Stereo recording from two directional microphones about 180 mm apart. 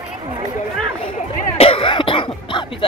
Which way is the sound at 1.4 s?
35° left (ahead or behind).